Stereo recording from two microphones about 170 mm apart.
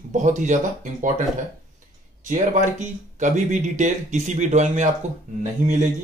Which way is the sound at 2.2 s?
50° right (ahead or behind).